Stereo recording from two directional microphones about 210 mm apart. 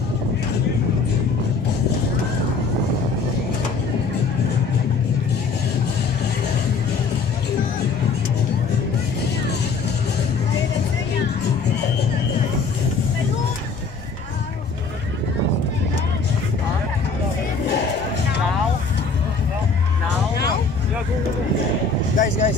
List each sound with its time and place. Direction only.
22.1 s vehicle: 40° left (ahead or behind)